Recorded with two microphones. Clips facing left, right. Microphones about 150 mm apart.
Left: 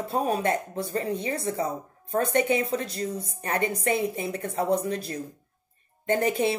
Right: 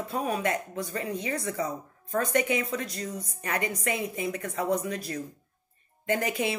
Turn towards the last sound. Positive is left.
turn(degrees=30)  # may be behind; listen again after turning